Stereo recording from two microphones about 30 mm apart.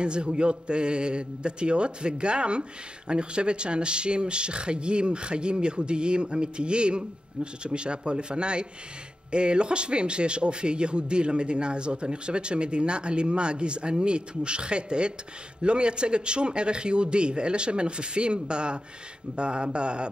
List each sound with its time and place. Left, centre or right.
0.0 s a man's voice: right